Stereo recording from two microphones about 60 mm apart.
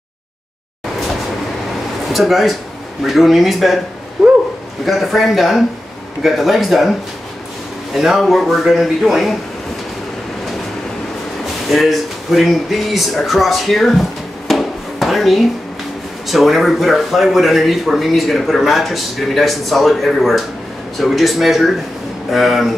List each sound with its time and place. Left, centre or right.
2.0 s speech: centre
4.2 s dog: centre
4.8 s speech: centre
11.7 s speech: centre
14.5 s a sound: centre
16.3 s speech: centre